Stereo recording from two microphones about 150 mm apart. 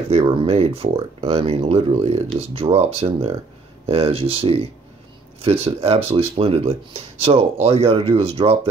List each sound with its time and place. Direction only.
0.3 s speech: 40° right (ahead or behind)